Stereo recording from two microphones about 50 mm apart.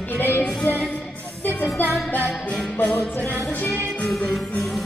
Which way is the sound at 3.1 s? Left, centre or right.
Left.